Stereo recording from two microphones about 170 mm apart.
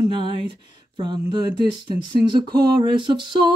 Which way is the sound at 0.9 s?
25° right (ahead or behind).